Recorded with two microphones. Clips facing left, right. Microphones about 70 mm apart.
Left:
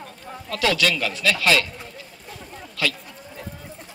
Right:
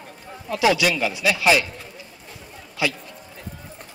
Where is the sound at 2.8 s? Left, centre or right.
Centre.